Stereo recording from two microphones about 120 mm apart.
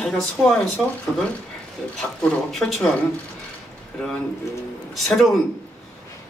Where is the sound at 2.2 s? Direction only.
Centre (ahead or behind).